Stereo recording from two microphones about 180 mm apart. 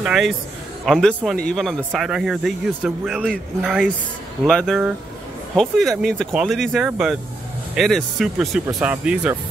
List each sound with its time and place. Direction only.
0.0 s a man's voice: centre (ahead or behind)